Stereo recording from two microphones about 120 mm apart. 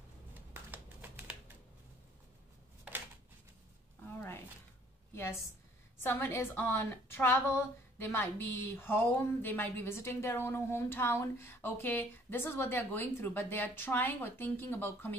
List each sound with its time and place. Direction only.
0.5 s typing: 15° right (ahead or behind)
5.1 s a sound: 20° left (ahead or behind)
5.9 s a woman's voice: 15° left (ahead or behind)